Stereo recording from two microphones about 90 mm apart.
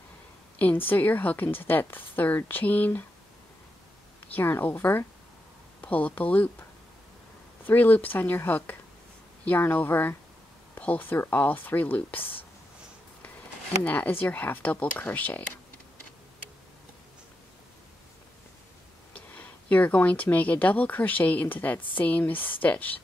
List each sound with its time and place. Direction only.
0.6 s a woman's voice: 20° left (ahead or behind)
4.3 s a woman's voice: 25° left (ahead or behind)
7.6 s a woman's voice: 20° left (ahead or behind)
13.8 s speech: 15° left (ahead or behind)
19.1 s a woman's voice: 15° left (ahead or behind)